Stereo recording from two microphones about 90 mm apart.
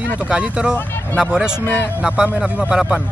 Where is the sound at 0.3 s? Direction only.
10° right (ahead or behind).